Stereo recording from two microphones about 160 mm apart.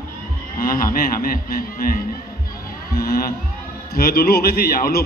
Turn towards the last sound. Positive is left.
turn(degrees=70)  # may be behind; listen again after turning